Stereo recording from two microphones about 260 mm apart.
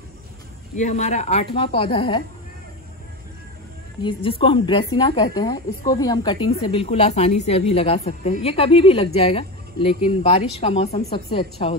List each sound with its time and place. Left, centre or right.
0.7 s speech: left
4.0 s speech: centre